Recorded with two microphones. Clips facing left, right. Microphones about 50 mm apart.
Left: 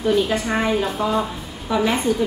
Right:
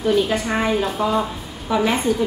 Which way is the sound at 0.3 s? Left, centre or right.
Centre.